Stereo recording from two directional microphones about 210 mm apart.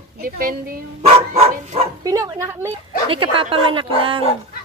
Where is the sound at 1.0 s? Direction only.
30° right (ahead or behind).